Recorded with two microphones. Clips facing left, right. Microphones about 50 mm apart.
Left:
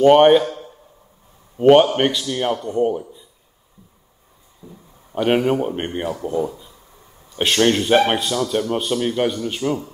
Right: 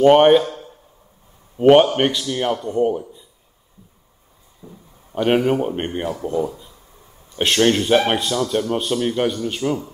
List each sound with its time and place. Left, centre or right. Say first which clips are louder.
0.0 s speech: even; centre
1.6 s a man's voice: even; centre
4.6 s speech: even; centre
5.1 s speech: even; centre